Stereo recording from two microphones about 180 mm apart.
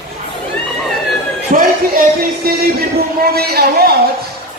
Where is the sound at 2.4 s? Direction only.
55° right (ahead or behind).